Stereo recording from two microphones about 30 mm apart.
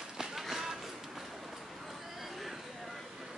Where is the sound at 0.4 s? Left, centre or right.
Centre.